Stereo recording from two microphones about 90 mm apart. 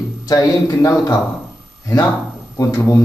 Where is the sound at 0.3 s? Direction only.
40° left (ahead or behind).